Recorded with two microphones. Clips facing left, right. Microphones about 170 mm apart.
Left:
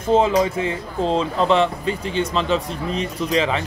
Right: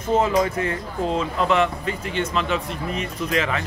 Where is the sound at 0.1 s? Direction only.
25° left (ahead or behind).